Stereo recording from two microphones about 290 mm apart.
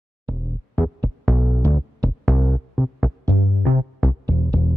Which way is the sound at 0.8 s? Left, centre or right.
Centre.